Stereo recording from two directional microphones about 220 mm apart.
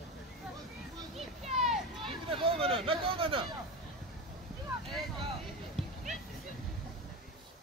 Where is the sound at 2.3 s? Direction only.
25° right (ahead or behind).